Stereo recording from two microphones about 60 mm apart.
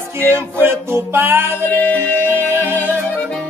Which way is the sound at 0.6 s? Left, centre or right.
Right.